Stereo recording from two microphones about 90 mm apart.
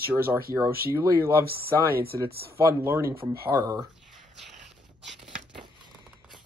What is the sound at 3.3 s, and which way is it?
Speech, 45° right (ahead or behind).